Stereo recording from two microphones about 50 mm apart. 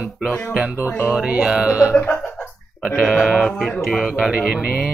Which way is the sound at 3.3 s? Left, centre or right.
Centre.